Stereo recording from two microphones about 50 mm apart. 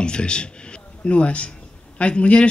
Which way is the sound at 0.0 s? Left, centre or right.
Centre.